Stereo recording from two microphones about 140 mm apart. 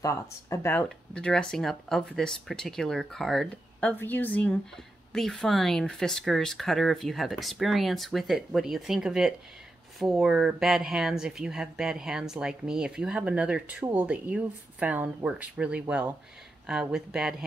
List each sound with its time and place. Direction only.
0.0 s speech: 20° left (ahead or behind)
0.8 s speech: 5° left (ahead or behind)
3.9 s a woman's voice: 15° left (ahead or behind); by 17.5 s 5° right (ahead or behind)